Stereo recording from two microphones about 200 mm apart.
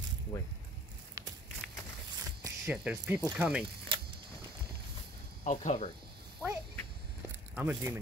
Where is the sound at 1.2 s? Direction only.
15° right (ahead or behind).